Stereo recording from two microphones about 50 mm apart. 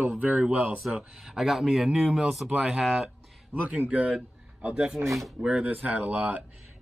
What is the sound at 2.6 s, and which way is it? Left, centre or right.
Speech, centre.